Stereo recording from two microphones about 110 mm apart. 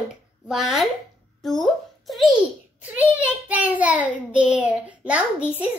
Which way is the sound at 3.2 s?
15° right (ahead or behind).